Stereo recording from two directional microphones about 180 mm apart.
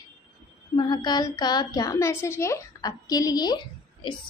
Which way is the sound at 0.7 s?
25° left (ahead or behind).